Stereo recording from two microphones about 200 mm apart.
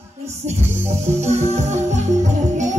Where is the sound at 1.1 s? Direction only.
35° right (ahead or behind).